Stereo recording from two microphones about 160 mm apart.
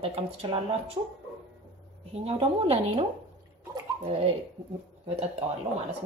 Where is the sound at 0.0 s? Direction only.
35° right (ahead or behind).